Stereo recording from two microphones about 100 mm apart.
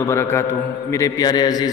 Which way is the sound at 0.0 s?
30° left (ahead or behind).